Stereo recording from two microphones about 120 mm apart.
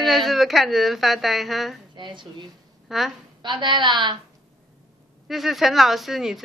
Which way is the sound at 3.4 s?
40° right (ahead or behind).